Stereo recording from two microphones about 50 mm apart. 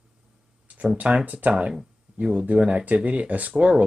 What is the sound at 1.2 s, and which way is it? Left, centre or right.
Speech, right.